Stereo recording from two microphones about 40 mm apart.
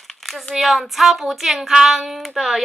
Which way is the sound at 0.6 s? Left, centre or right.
Centre.